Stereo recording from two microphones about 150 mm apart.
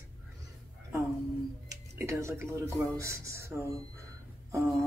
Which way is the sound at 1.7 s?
20° right (ahead or behind).